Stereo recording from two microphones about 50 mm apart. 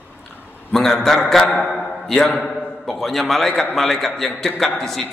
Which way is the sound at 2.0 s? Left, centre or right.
Centre.